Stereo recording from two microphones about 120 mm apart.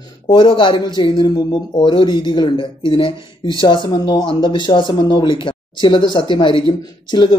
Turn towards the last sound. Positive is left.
turn(degrees=40)  # may be behind; listen again after turning